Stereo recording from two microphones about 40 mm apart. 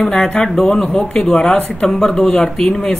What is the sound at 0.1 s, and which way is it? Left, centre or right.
Speech, centre.